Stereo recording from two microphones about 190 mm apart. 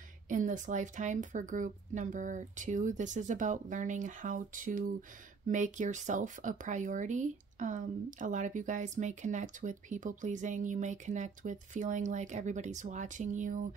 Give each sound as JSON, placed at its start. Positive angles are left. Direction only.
{"t": 0.3, "sound": "speech", "side_deg": -40}